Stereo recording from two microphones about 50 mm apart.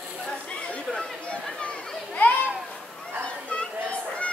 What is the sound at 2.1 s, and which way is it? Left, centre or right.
Children playing, left.